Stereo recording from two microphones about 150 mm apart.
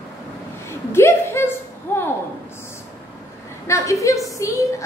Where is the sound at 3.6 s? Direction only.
20° left (ahead or behind).